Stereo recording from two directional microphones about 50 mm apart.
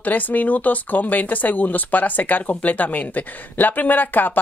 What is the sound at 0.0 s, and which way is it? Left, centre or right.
Speech, left.